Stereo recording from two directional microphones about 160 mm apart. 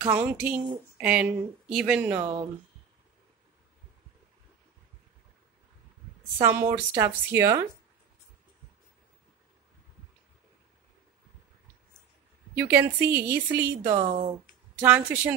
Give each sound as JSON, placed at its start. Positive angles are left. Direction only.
{"t": 0.0, "sound": "a woman's voice", "side_deg": -10}
{"t": 6.4, "sound": "a woman's voice", "side_deg": -15}
{"t": 12.5, "sound": "a woman's voice", "side_deg": -15}
{"t": 13.9, "sound": "speech", "side_deg": -35}
{"t": 14.8, "sound": "a woman's voice", "side_deg": -10}